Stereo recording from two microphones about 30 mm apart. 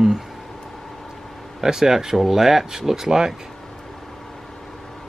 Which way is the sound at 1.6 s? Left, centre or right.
Centre.